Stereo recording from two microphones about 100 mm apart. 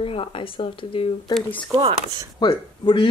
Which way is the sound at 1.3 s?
40° left (ahead or behind).